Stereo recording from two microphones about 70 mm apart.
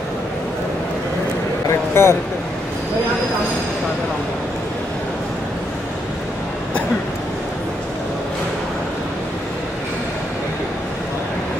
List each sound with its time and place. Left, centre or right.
2.0 s speech: left